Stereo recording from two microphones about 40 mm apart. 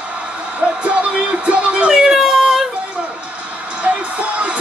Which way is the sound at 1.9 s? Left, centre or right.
Centre.